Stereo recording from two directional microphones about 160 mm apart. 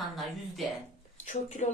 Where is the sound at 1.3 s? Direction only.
45° left (ahead or behind).